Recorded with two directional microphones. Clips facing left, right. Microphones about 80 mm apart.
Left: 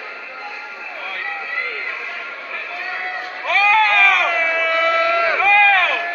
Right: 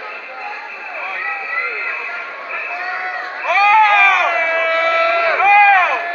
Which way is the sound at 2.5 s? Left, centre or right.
Centre.